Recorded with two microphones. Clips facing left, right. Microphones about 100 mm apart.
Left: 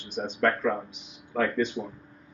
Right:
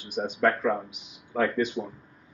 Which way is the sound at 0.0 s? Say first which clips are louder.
Right 1 dB; 10° right (ahead or behind).